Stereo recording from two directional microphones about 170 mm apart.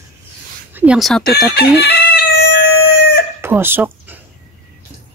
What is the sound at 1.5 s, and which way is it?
Chicken, 70° left (ahead or behind).